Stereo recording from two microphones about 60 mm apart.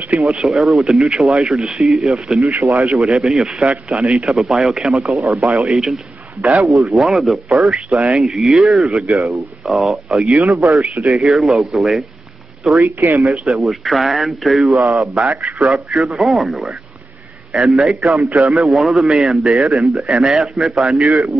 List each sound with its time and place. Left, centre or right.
0.2 s a man's voice: centre
12.8 s speech: right
13.3 s speech: centre